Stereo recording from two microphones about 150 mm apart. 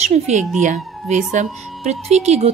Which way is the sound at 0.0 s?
45° right (ahead or behind).